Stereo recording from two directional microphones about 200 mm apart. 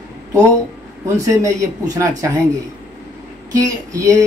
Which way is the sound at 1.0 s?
15° right (ahead or behind).